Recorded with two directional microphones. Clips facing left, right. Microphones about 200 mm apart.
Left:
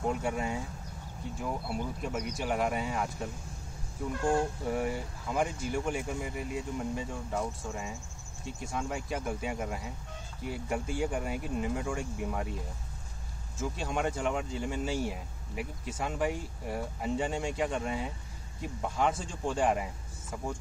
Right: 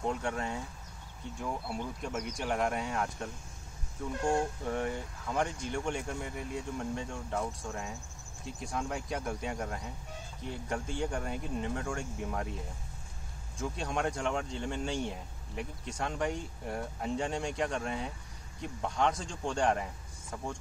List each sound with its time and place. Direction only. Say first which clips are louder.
0.0 s speech: left 2 dB; 5° left (ahead or behind)
4.1 s speech: left 1 dB; 25° right (ahead or behind)
4.6 s speech: left 2 dB; 5° left (ahead or behind)
13.6 s speech: left 1 dB; centre (ahead or behind)